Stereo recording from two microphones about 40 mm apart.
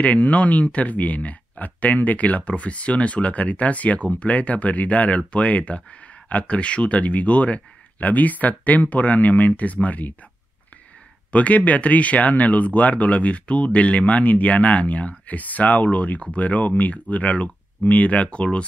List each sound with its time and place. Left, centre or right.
0.0 s speech: left
11.3 s speech: left